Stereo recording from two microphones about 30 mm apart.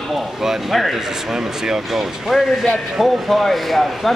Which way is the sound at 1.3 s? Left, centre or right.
Right.